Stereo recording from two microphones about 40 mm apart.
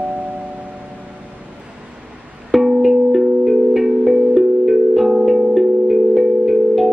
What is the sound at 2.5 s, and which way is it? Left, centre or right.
Music, centre.